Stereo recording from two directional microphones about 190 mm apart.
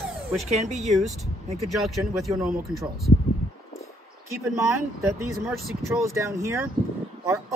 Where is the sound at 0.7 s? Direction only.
Centre (ahead or behind).